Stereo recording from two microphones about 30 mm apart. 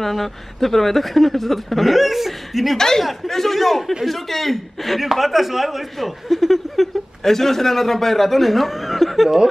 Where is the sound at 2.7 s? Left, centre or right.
Centre.